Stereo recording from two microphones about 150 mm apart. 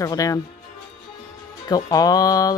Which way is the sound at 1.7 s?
25° left (ahead or behind).